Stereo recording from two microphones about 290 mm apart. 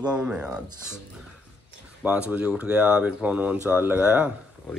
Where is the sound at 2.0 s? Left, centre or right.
Centre.